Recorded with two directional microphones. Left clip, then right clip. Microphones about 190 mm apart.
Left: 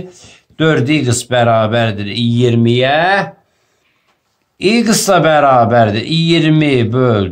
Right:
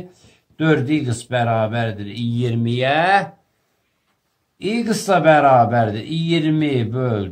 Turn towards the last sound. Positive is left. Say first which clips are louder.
# left 9 dB
turn(degrees=25)  # may be behind; listen again after turning